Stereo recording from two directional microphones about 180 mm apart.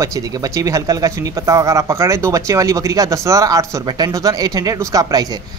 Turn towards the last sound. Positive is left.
turn(degrees=-20)  # may be behind; listen again after turning